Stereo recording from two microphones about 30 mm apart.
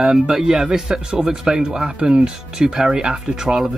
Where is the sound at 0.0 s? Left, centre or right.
Right.